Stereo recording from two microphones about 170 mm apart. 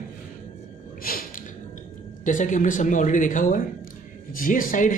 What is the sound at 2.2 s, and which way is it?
A man's voice, 50° left (ahead or behind).